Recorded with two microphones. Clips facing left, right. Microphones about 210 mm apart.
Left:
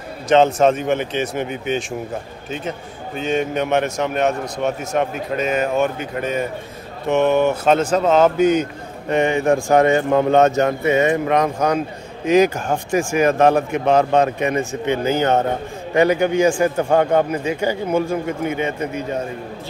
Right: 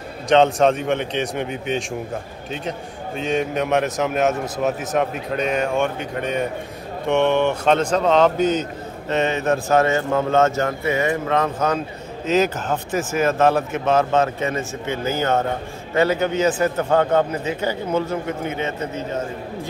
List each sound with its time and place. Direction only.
0.3 s a man's voice: centre (ahead or behind)
3.2 s a man's voice: centre (ahead or behind)